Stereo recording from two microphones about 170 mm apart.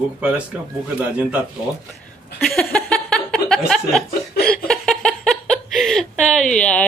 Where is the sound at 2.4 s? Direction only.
5° left (ahead or behind).